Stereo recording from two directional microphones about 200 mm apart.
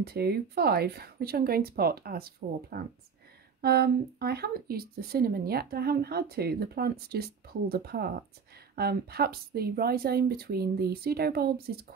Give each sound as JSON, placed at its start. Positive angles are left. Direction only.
{"t": 0.0, "sound": "speech", "side_deg": -50}